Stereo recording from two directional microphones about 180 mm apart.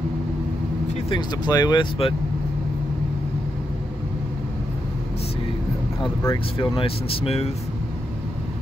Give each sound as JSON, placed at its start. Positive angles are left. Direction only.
{"t": 1.1, "sound": "speech", "side_deg": 25}
{"t": 6.2, "sound": "speech", "side_deg": 25}